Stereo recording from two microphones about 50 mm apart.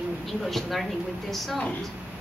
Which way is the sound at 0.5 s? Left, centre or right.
Centre.